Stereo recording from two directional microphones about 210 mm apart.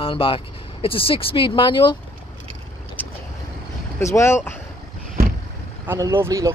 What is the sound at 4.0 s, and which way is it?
Speech, 15° left (ahead or behind).